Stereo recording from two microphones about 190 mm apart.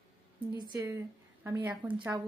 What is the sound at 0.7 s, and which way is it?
A woman's voice, 10° right (ahead or behind).